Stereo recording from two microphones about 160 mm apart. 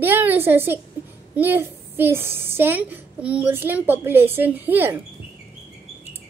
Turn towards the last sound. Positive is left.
turn(degrees=-10)  # may be behind; listen again after turning